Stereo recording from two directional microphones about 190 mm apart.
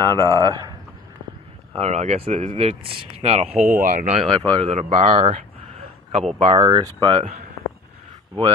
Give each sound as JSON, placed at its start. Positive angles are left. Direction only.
{"t": 0.0, "sound": "speech", "side_deg": -20}
{"t": 1.7, "sound": "speech", "side_deg": -35}
{"t": 4.2, "sound": "speech", "side_deg": -25}
{"t": 4.6, "sound": "a sound", "side_deg": -35}
{"t": 6.4, "sound": "speech", "side_deg": -25}